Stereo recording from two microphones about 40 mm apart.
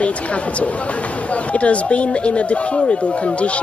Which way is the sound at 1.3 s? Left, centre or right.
Left.